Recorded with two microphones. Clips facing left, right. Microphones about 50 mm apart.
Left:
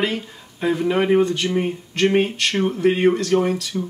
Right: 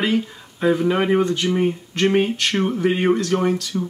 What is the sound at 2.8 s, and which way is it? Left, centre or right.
Speech, centre.